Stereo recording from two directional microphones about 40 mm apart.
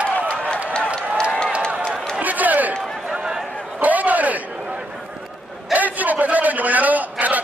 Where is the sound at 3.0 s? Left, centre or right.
Centre.